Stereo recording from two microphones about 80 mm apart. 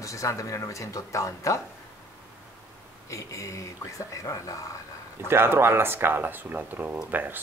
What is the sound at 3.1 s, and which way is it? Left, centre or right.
Speech, left.